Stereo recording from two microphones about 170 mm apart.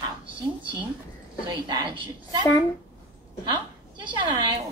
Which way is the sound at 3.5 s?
25° right (ahead or behind).